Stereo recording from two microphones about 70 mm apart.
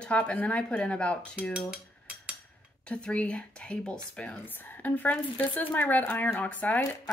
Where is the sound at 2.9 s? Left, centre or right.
Centre.